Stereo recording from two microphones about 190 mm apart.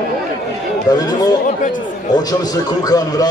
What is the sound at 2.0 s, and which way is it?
A man's voice, 20° left (ahead or behind).